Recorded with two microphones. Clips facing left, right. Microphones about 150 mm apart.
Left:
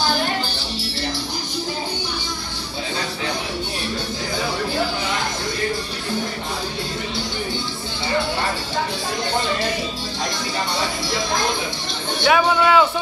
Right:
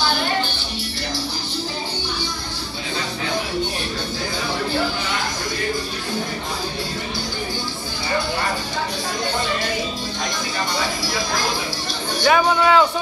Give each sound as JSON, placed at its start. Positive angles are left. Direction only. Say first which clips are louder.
{"t": 0.0, "sound": "music", "louder": "even", "side_deg": 35}
{"t": 12.3, "sound": "speech", "louder": "even", "side_deg": 0}